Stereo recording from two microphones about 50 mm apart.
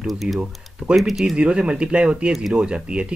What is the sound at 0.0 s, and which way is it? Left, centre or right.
Speech, centre.